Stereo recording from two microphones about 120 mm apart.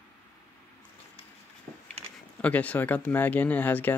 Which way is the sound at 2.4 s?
10° left (ahead or behind).